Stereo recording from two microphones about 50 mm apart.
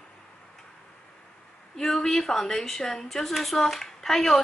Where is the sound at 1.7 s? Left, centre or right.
Centre.